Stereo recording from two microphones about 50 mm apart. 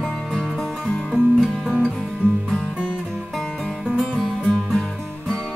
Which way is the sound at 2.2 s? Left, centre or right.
Right.